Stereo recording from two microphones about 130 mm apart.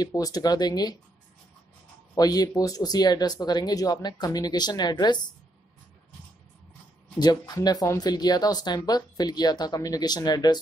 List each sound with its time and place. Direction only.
0.0 s speech: 30° left (ahead or behind)
2.1 s speech: 30° left (ahead or behind)
7.2 s speech: 30° left (ahead or behind)